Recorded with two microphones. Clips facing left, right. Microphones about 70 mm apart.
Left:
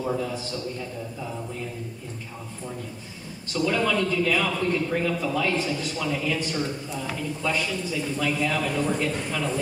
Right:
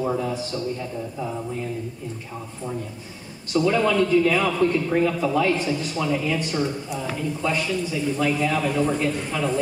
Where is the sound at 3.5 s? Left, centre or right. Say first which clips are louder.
Right 4 dB; centre.